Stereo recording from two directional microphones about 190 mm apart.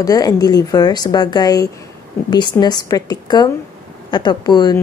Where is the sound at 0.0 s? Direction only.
20° left (ahead or behind).